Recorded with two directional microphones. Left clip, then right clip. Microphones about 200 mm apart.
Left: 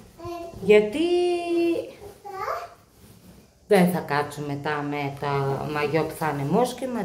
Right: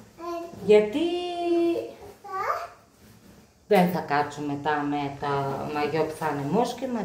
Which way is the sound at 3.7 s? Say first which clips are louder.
Left 1 dB; 15° left (ahead or behind).